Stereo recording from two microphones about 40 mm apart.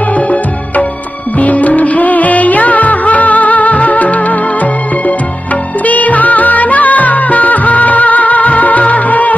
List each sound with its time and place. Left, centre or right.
0.1 s music: left
5.9 s music: left